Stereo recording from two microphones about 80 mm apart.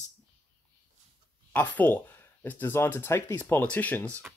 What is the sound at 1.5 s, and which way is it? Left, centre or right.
Speech, left.